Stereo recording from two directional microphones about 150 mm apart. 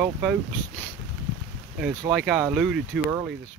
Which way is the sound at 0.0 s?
5° right (ahead or behind).